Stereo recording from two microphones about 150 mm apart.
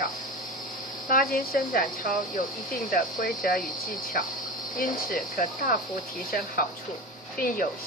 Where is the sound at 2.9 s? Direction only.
70° left (ahead or behind).